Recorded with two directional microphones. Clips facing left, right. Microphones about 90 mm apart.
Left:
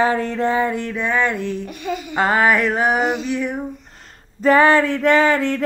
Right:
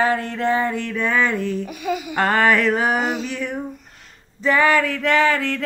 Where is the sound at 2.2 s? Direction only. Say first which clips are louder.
Left 1 dB; 10° left (ahead or behind).